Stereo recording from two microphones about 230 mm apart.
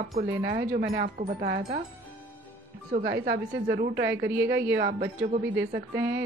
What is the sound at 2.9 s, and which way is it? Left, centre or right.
A woman's voice, right.